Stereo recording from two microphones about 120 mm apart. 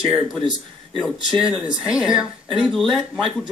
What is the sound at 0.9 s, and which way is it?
Speech, 5° left (ahead or behind).